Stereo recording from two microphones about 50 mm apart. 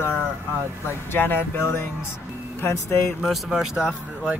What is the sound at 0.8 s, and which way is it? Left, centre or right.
Speech, left.